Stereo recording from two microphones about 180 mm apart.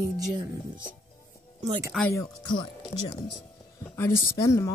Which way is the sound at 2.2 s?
25° left (ahead or behind).